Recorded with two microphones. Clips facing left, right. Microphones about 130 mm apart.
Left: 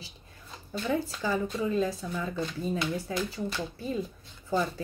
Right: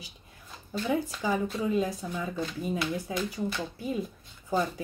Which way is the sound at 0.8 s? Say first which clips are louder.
Right 1 dB; 15° right (ahead or behind).